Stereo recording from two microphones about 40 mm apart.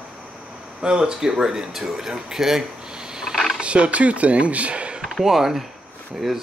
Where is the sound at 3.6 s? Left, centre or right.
Right.